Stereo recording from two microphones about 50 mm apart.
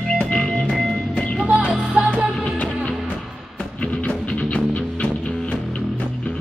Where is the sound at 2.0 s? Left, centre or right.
Right.